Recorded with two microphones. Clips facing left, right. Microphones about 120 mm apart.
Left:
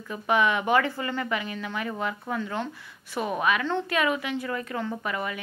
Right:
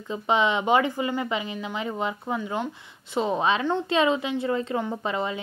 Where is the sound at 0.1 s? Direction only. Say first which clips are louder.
Right 1 dB; 20° right (ahead or behind).